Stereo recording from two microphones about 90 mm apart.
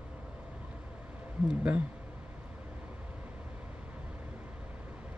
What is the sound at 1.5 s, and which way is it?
Speech, 15° right (ahead or behind).